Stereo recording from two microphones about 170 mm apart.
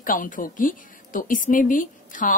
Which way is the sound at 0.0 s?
55° left (ahead or behind).